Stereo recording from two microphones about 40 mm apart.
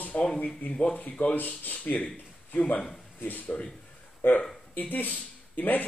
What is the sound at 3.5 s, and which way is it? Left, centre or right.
Speech, centre.